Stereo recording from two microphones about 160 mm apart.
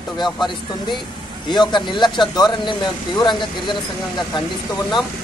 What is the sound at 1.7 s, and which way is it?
Speech, 30° left (ahead or behind).